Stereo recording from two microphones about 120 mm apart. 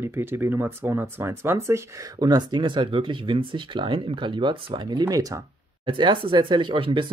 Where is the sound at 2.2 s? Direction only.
35° right (ahead or behind).